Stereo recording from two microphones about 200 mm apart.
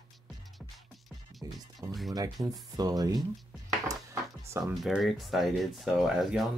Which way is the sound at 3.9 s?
15° right (ahead or behind).